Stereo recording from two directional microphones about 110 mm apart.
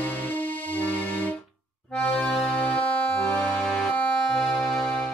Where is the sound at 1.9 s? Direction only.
15° left (ahead or behind).